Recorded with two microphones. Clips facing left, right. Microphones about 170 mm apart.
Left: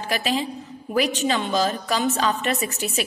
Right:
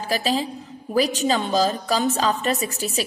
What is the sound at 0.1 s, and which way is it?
A woman's voice, 35° right (ahead or behind).